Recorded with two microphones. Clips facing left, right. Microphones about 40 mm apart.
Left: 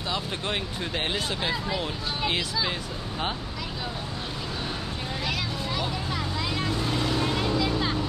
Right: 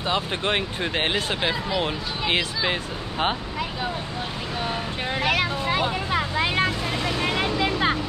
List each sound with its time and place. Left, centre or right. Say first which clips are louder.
0.1 s speech: right 6 dB; right
5.2 s vehicle: right 8 dB; right